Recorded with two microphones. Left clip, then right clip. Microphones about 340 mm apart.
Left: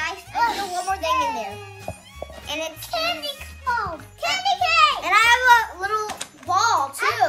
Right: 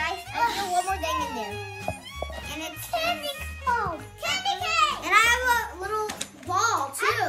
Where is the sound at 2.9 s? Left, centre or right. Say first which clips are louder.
Left 2 dB; left.